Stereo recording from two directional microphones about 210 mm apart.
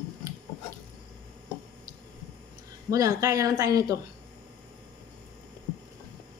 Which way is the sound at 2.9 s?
15° right (ahead or behind).